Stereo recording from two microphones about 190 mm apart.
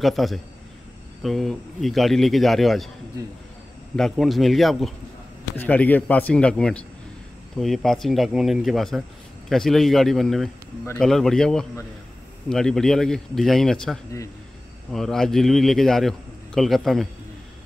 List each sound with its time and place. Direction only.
0.0 s a man's voice: centre (ahead or behind)
3.2 s speech: 20° right (ahead or behind)
3.9 s a man's voice: centre (ahead or behind)